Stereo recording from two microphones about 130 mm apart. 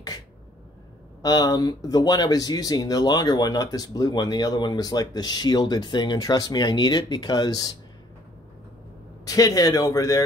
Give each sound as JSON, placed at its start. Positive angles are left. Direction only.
{"t": 1.2, "sound": "speech", "side_deg": 30}
{"t": 9.2, "sound": "speech", "side_deg": 25}